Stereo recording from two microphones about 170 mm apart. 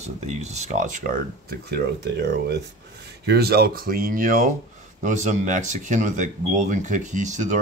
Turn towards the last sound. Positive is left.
turn(degrees=-45)  # may be behind; listen again after turning